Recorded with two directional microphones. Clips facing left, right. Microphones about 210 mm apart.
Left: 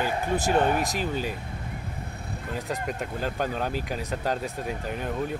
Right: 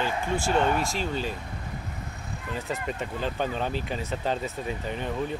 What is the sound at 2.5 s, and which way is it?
Speech, 5° left (ahead or behind).